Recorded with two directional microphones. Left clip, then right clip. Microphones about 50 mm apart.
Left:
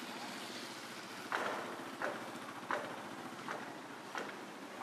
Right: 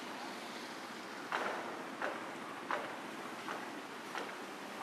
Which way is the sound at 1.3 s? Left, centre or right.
Centre.